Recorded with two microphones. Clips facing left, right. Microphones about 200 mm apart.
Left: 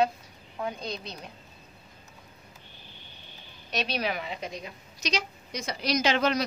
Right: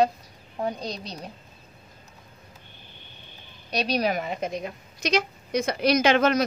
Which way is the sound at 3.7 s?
40° right (ahead or behind).